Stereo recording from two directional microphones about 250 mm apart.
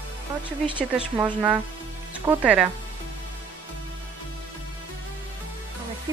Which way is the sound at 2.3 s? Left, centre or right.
Centre.